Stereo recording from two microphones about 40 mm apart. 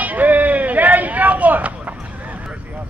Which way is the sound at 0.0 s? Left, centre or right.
Right.